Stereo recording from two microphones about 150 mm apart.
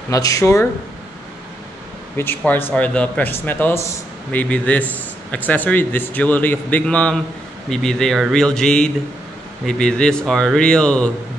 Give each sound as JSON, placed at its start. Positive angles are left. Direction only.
{"t": 0.1, "sound": "speech", "side_deg": 20}
{"t": 2.1, "sound": "speech", "side_deg": 15}